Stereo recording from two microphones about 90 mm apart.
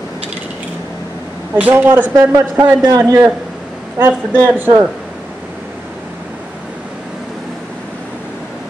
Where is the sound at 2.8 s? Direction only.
45° right (ahead or behind).